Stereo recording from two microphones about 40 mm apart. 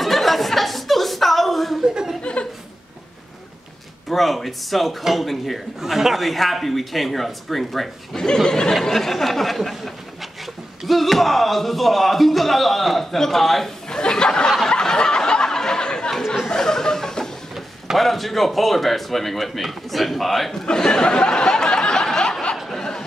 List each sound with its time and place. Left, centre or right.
0.0 s chuckle: centre
2.3 s chuckle: left
4.1 s speech: centre
9.0 s speech: centre
13.8 s a sound: centre
17.6 s a sound: centre
18.0 s speech: centre
20.6 s a sound: centre
22.7 s chuckle: centre